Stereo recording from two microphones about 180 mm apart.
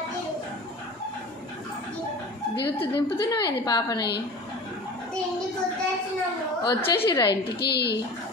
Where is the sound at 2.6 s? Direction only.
30° left (ahead or behind).